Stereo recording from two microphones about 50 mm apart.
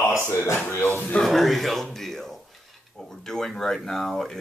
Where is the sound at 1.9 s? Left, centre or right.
Centre.